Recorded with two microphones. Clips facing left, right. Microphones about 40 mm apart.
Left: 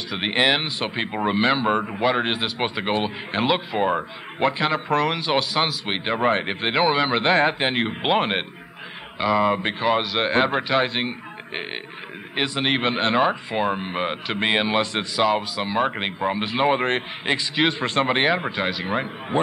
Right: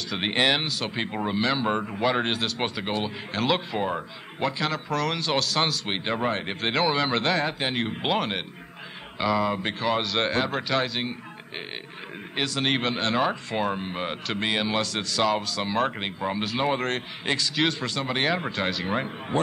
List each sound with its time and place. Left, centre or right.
0.1 s a man's voice: centre
1.2 s speech: left
7.3 s speech: left; by 10.3 s centre
10.3 s a man's voice: left
17.8 s a man's voice: left; by 19.4 s centre